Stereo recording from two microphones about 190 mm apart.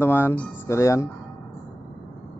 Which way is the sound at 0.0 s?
10° left (ahead or behind).